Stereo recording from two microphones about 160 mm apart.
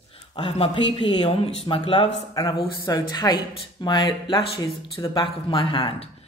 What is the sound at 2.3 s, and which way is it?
A woman's voice, 20° left (ahead or behind).